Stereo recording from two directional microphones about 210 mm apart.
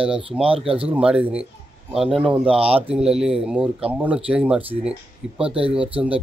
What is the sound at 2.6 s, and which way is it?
Speech, 25° right (ahead or behind).